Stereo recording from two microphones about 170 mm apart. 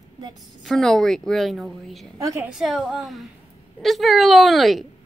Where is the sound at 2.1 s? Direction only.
20° right (ahead or behind).